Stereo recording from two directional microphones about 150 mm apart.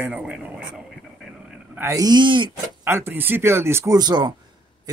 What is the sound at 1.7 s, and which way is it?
Speech, 20° right (ahead or behind).